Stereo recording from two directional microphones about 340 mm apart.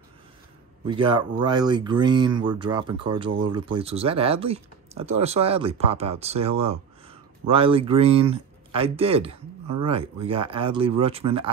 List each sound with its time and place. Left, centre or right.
0.8 s speech: centre